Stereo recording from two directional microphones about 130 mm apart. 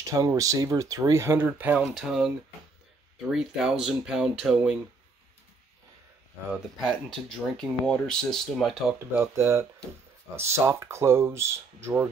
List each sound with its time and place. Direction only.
0.1 s speech: 25° right (ahead or behind); by 4.7 s 5° right (ahead or behind)
6.5 s speech: centre (ahead or behind)
9.1 s speech: 20° right (ahead or behind)